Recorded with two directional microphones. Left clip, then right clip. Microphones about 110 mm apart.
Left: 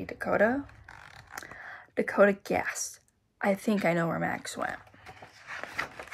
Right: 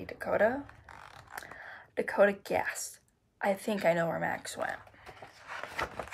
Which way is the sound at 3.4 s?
30° left (ahead or behind).